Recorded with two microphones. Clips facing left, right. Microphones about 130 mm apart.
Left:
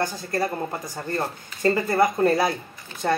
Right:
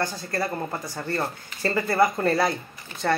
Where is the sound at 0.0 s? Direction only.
15° left (ahead or behind).